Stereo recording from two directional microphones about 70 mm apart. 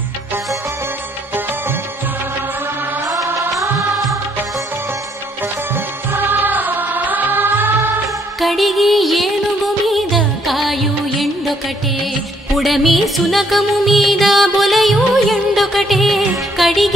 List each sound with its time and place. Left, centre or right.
5.8 s music: right
8.4 s music: centre
12.5 s music: centre